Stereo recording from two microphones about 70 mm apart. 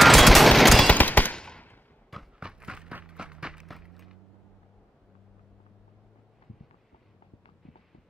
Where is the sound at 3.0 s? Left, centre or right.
Centre.